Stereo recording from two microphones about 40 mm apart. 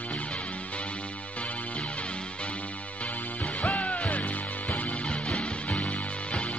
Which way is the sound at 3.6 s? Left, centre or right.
Left.